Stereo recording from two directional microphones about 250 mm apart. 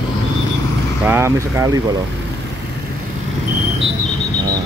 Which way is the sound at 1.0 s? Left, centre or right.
Centre.